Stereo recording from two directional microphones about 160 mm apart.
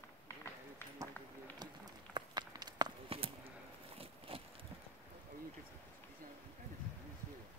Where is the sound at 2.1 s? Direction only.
25° right (ahead or behind).